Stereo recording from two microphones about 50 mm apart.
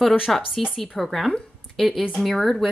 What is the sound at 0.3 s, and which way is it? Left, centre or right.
Speech, centre.